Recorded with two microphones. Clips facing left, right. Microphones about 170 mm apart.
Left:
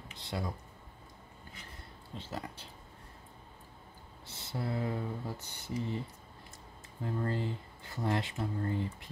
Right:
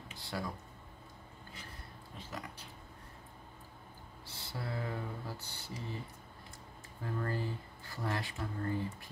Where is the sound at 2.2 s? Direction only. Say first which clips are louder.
Left 4 dB; 30° left (ahead or behind).